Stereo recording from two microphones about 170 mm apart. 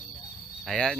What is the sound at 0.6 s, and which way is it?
Cricket, centre (ahead or behind).